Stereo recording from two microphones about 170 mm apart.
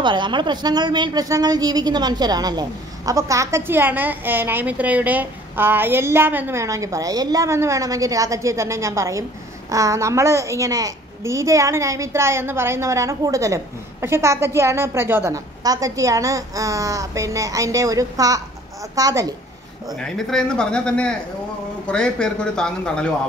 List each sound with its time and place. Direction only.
0.0 s a woman's voice: 30° right (ahead or behind)
20.0 s a man's voice: 5° left (ahead or behind)